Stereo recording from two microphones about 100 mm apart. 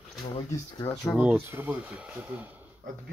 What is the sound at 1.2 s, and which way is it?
Speech, 20° right (ahead or behind).